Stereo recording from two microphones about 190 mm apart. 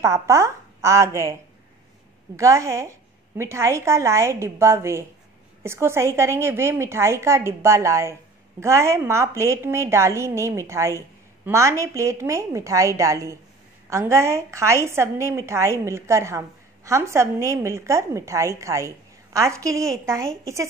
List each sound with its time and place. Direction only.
0.0 s a woman's voice: 15° right (ahead or behind)
2.3 s a woman's voice: 15° right (ahead or behind)